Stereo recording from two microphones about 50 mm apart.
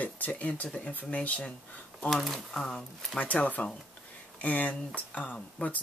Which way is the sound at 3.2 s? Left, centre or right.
Left.